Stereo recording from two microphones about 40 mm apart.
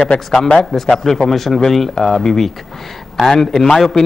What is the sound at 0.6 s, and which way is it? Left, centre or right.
A man's voice, centre.